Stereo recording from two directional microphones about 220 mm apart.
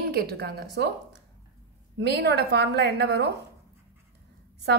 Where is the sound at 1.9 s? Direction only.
50° right (ahead or behind).